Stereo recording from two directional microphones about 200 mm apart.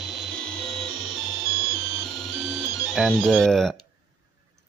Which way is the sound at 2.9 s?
Centre (ahead or behind).